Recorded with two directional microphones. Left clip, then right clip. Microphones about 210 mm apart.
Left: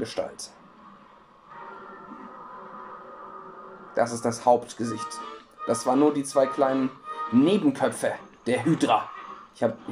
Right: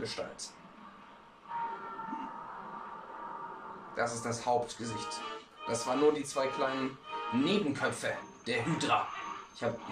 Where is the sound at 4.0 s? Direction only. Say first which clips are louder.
Left 9 dB; 35° left (ahead or behind).